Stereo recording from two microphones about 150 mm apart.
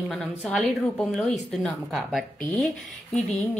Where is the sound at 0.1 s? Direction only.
5° left (ahead or behind).